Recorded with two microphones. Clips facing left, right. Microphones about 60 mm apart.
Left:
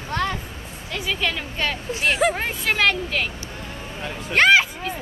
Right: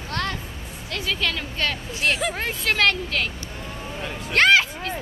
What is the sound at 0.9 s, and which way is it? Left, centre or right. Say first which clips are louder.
A woman's voice: left 1 dB; centre.